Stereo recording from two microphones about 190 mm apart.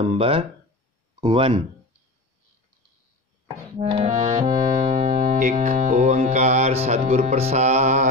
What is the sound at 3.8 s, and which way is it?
Speech, 35° right (ahead or behind).